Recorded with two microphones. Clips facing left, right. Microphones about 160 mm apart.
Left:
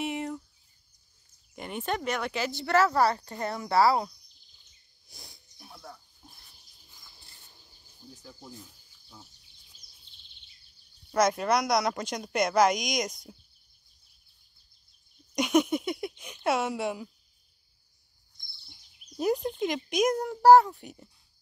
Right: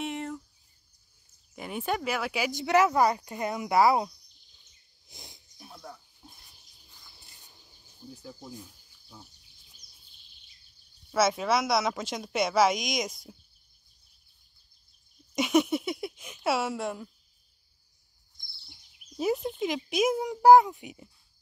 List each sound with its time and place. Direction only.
0.0 s a sound: centre (ahead or behind)
1.5 s speech: 5° right (ahead or behind)
5.0 s dog: 20° right (ahead or behind)
5.6 s a sound: centre (ahead or behind)
8.1 s speech: 10° right (ahead or behind)
8.6 s insect: centre (ahead or behind)
11.1 s speech: centre (ahead or behind)
15.3 s speech: centre (ahead or behind)
19.1 s speech: centre (ahead or behind)